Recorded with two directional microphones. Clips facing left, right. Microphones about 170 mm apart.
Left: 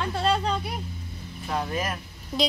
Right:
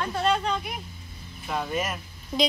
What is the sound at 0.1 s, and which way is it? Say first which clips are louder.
Speech: even; 30° left (ahead or behind).